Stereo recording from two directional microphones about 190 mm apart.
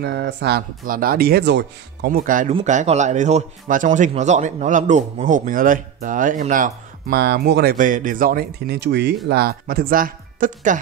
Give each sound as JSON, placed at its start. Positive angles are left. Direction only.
{"t": 0.0, "sound": "speech", "side_deg": -60}
{"t": 2.0, "sound": "speech", "side_deg": -45}